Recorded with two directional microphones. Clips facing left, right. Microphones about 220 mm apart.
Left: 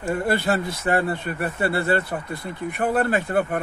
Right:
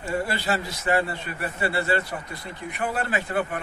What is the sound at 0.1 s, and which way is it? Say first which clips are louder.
A man's voice: left 4 dB; 55° left (ahead or behind).